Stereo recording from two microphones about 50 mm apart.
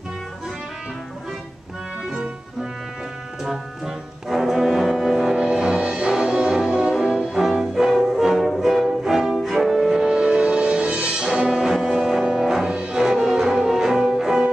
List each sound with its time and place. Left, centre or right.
3.4 s music: centre
5.6 s music: right
7.1 s brass instrument: centre
7.7 s music: centre
11.6 s music: centre
12.6 s music: centre